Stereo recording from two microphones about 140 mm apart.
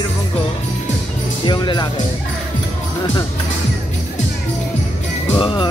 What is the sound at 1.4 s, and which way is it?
Speech, 30° left (ahead or behind).